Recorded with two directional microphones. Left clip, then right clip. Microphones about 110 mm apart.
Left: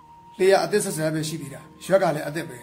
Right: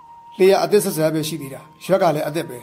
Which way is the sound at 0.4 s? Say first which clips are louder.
Right 4 dB; 80° right.